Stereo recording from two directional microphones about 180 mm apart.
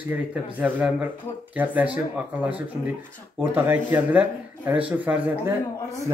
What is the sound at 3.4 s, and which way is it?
Speech, 10° right (ahead or behind).